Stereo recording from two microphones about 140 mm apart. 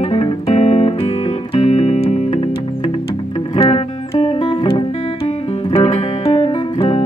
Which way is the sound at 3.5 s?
40° left (ahead or behind).